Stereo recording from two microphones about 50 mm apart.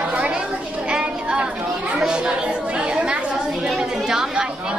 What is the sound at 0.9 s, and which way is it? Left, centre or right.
Children playing, centre.